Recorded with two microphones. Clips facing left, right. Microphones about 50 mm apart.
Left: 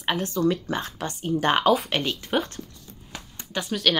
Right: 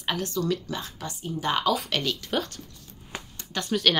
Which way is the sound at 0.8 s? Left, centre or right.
Left.